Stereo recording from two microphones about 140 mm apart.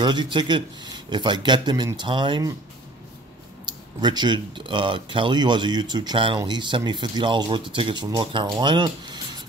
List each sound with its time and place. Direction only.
0.0 s speech: 30° right (ahead or behind)
3.6 s speech: 30° right (ahead or behind)
8.5 s filing: 30° right (ahead or behind)